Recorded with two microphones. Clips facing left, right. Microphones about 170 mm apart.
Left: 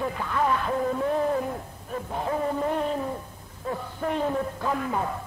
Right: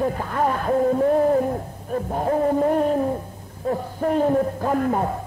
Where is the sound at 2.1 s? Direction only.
45° right (ahead or behind).